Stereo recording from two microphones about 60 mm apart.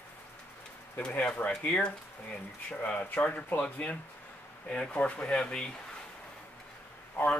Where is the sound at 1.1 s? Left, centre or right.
Left.